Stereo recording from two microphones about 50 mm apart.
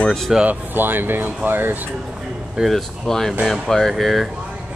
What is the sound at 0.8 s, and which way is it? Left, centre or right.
Speech, right.